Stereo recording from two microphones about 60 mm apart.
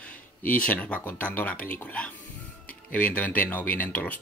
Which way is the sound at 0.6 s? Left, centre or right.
Centre.